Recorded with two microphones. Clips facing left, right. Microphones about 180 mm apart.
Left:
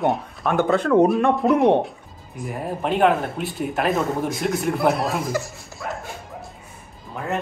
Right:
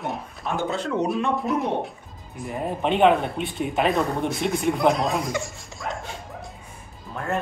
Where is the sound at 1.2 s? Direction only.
65° left (ahead or behind).